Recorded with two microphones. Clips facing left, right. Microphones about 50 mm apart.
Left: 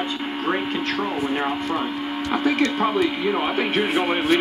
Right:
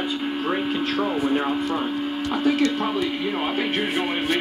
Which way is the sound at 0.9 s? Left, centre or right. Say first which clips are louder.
Right 2 dB; centre.